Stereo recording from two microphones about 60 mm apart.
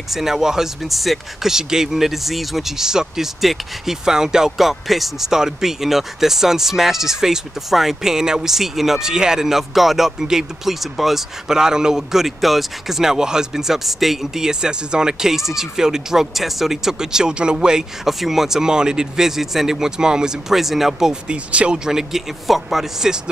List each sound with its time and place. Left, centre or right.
0.1 s speech: centre